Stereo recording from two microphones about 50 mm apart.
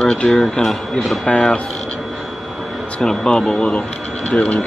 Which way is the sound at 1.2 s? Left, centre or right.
Left.